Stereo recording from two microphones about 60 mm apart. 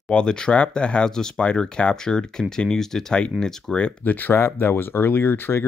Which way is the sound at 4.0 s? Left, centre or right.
Left.